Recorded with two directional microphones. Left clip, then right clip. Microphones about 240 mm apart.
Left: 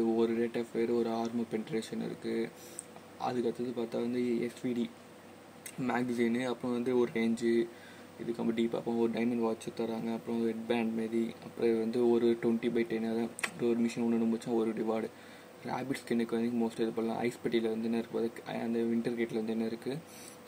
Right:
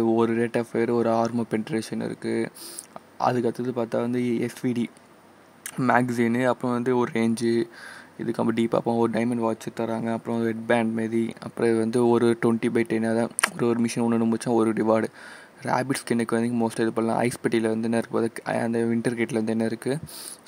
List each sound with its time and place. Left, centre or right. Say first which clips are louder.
0.0 s speech: right 8 dB; right
5.8 s speech: right 11 dB; right